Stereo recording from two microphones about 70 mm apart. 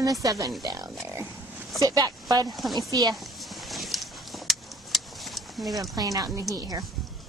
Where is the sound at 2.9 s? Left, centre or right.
Right.